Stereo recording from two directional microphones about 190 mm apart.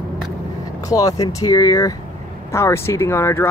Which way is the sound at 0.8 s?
20° left (ahead or behind).